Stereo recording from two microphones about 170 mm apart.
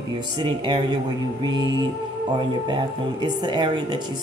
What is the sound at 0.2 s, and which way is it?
Speech, 25° right (ahead or behind).